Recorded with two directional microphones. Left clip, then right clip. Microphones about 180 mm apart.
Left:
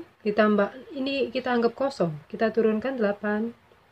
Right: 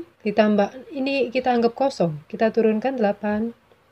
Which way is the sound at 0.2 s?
15° right (ahead or behind).